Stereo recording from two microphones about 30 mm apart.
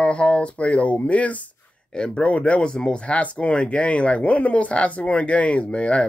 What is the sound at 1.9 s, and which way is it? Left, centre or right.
Speech, left.